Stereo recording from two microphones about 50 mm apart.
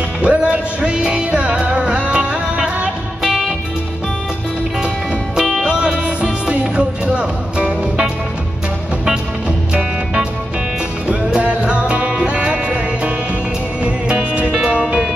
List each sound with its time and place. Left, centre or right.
0.2 s music: right
5.6 s music: centre
11.1 s music: centre